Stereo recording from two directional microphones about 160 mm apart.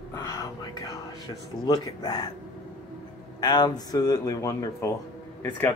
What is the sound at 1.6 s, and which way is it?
Speech, 25° left (ahead or behind).